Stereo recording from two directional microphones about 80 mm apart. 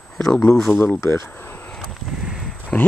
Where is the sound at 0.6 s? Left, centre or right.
Centre.